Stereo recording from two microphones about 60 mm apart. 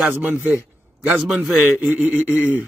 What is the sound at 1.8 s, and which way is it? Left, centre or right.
Speech, right.